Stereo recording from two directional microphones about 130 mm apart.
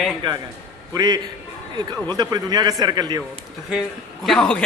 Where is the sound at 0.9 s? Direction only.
30° right (ahead or behind).